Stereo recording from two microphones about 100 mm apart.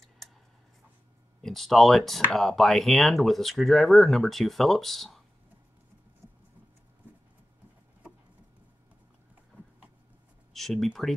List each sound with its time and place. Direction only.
1.4 s speech: 5° left (ahead or behind)
6.2 s patter: 30° right (ahead or behind)
10.5 s speech: centre (ahead or behind)